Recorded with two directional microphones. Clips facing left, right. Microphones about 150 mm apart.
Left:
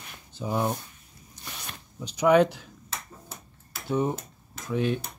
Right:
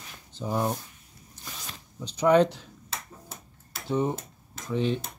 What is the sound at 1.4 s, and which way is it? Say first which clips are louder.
Zipper: left 1 dB; 65° left (ahead or behind).